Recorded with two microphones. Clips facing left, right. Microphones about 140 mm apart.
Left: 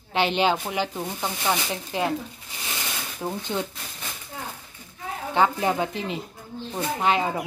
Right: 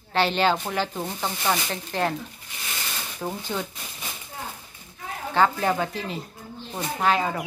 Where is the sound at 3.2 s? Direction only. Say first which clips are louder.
Left 1 dB; 5° left (ahead or behind).